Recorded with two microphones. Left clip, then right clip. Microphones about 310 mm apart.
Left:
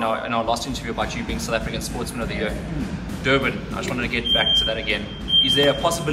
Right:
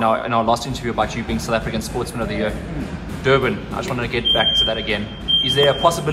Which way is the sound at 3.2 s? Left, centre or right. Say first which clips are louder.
Right 3 dB; centre.